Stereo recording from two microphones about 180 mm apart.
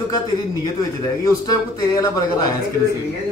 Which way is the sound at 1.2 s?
20° left (ahead or behind).